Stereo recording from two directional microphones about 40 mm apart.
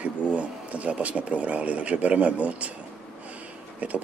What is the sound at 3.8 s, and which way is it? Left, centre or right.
Speech, right.